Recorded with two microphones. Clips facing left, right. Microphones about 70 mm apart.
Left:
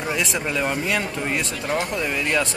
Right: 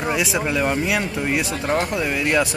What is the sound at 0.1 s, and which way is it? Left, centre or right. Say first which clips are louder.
Speech: right 2 dB; centre.